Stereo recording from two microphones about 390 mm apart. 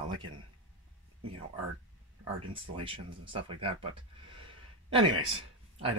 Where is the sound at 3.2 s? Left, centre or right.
Centre.